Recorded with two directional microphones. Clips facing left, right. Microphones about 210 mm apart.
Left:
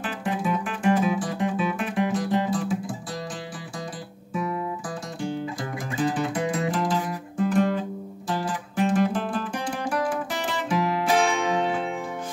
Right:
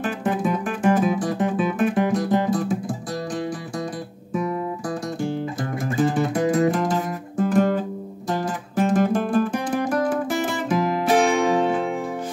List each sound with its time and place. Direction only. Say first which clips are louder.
0.0 s music: right 5 dB; 45° right (ahead or behind)
4.3 s guitar: right 4 dB; 40° right (ahead or behind)
5.9 s music: right 4 dB; 45° right (ahead or behind)